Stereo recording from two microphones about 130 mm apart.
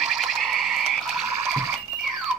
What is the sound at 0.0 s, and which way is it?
Frog, centre (ahead or behind).